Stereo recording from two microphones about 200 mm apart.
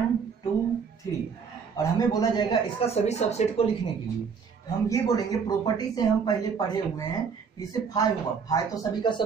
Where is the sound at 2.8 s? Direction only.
30° left (ahead or behind).